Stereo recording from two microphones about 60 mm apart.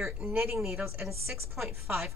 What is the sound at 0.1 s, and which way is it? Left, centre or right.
Speech, right.